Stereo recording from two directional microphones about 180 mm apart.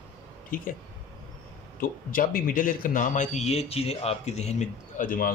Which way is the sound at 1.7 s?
50° left (ahead or behind).